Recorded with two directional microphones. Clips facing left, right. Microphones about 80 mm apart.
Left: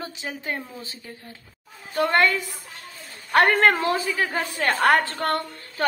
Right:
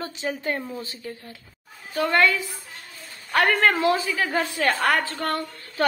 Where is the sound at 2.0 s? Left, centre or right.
Left.